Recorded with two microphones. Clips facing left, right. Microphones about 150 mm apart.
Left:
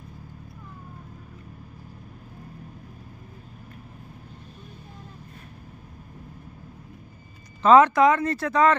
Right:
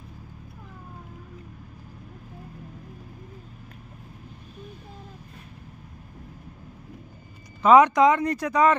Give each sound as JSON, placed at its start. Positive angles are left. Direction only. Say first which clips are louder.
{"t": 7.6, "sound": "speech", "louder": "even", "side_deg": -15}